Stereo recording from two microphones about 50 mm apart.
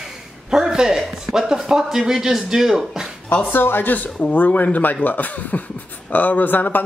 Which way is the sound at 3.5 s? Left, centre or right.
Left.